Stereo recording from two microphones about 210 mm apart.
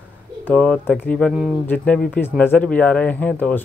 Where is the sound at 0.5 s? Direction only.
5° left (ahead or behind).